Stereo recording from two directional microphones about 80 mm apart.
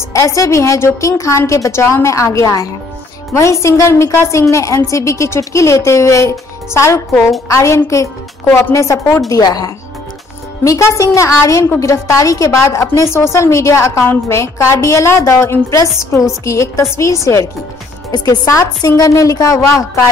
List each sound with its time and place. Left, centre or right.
0.1 s a woman's voice: left
9.3 s a woman's voice: left
10.6 s a woman's voice: left
18.1 s a woman's voice: left
19.6 s a woman's voice: left